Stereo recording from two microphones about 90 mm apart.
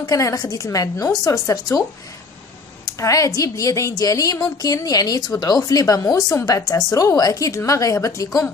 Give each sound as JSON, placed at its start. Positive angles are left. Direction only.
{"t": 0.0, "sound": "a woman's voice", "side_deg": 40}
{"t": 2.8, "sound": "a woman's voice", "side_deg": 40}